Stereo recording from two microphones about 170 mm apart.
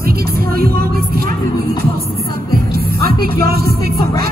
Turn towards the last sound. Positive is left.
turn(degrees=-65)  # may be behind; listen again after turning